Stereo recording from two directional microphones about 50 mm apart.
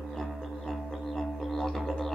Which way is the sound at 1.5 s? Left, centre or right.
Centre.